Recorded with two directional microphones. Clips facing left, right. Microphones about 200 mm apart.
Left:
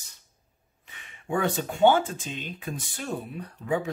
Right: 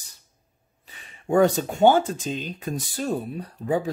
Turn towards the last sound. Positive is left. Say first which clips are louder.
# right 3 dB
turn(degrees=-35)  # may be behind; listen again after turning